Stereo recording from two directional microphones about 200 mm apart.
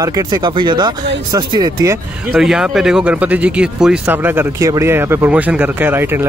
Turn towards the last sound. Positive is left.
turn(degrees=-10)  # may be behind; listen again after turning